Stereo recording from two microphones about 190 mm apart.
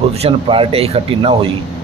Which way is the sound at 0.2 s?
30° right (ahead or behind).